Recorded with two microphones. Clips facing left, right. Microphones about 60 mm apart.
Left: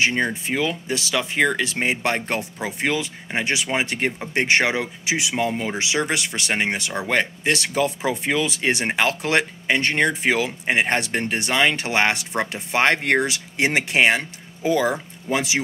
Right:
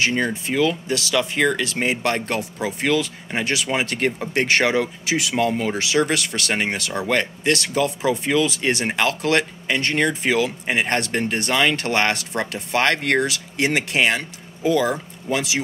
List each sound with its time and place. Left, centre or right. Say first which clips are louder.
0.0 s speech: even; left